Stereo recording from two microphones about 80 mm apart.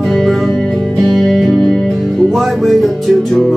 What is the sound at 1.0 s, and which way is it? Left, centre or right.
Music, centre.